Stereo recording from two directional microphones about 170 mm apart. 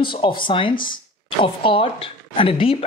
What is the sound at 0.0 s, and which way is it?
Speech, 30° left (ahead or behind).